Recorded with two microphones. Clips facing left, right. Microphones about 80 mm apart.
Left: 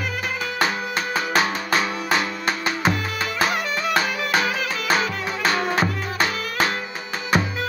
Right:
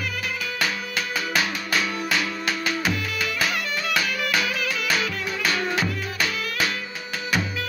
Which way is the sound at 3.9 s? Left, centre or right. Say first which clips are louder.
Left 3 dB; left.